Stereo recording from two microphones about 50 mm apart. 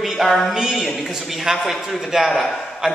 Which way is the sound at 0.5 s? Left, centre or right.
Centre.